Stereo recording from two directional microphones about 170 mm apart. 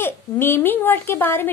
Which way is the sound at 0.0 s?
15° left (ahead or behind).